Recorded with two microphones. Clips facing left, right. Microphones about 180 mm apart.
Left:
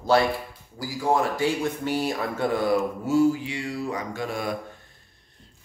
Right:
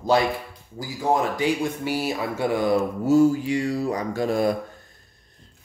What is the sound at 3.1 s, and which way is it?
A man's voice, 45° right (ahead or behind).